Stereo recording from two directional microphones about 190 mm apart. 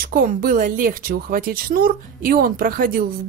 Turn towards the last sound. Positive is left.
turn(degrees=-45)  # may be behind; listen again after turning